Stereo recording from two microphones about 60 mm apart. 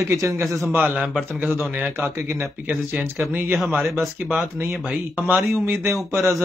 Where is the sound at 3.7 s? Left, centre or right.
Right.